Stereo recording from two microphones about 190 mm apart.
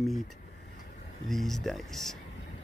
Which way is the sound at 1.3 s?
Centre (ahead or behind).